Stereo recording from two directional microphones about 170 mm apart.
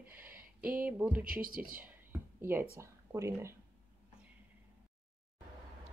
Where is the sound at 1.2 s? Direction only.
55° right (ahead or behind).